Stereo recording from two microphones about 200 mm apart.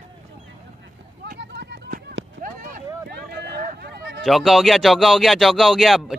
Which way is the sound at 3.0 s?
50° right (ahead or behind).